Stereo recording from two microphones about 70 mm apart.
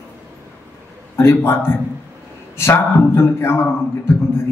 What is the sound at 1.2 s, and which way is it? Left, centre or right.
A man's voice, left.